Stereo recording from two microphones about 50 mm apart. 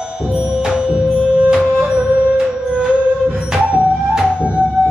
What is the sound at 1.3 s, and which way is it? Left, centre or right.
Music, centre.